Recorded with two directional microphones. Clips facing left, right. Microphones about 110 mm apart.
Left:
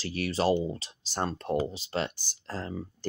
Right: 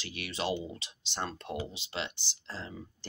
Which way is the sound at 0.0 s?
40° left (ahead or behind).